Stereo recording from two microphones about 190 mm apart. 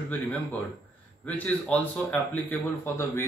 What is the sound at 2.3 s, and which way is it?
Speech, 10° left (ahead or behind).